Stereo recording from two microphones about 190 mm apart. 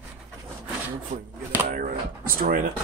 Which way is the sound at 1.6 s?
50° right (ahead or behind).